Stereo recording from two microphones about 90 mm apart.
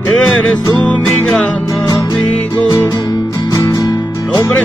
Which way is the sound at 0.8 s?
10° left (ahead or behind).